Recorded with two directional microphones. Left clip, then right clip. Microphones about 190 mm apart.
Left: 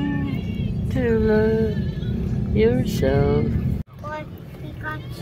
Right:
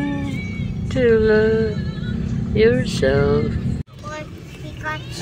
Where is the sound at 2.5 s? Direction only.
15° left (ahead or behind).